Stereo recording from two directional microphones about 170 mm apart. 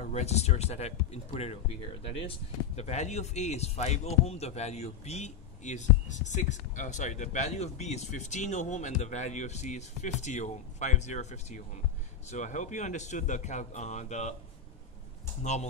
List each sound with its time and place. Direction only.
0.0 s speech: 40° left (ahead or behind)